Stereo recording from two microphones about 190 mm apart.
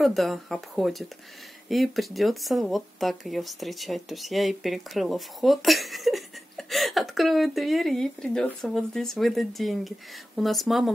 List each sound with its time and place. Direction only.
0.0 s speech: centre (ahead or behind)